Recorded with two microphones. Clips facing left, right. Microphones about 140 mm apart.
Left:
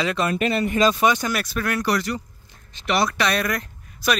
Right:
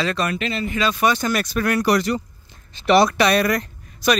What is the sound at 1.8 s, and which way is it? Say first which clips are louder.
Speech: right 4 dB; 20° right (ahead or behind).